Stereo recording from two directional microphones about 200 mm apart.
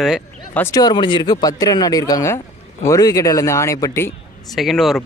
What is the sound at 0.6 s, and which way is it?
Speech, 20° left (ahead or behind).